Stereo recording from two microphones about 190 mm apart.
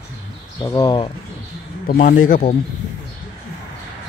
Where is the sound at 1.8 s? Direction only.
45° left (ahead or behind).